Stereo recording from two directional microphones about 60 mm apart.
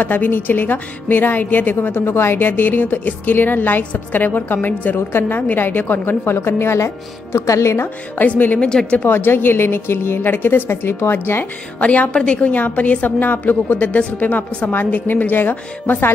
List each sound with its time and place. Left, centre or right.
0.0 s a woman's voice: left
6.3 s a woman's voice: left
7.3 s a woman's voice: left
8.2 s a woman's voice: left
8.5 s speech: centre
9.0 s a woman's voice: left
11.8 s a woman's voice: left